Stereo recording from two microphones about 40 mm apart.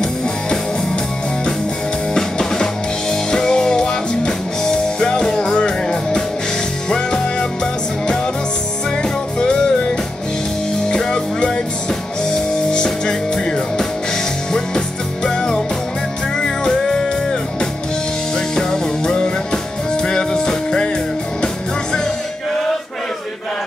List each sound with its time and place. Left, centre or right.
2.1 s music: centre
9.4 s music: centre
11.0 s music: centre
15.2 s music: centre
18.5 s music: centre